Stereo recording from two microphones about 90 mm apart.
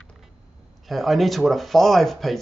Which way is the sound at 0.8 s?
Centre (ahead or behind).